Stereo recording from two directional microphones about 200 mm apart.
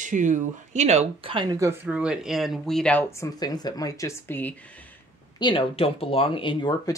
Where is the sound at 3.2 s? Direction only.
20° left (ahead or behind).